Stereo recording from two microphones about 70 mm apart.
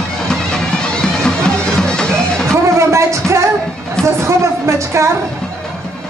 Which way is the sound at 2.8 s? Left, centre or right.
Right.